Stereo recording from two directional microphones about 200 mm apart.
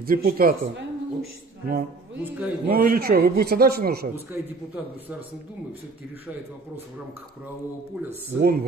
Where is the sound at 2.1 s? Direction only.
10° right (ahead or behind).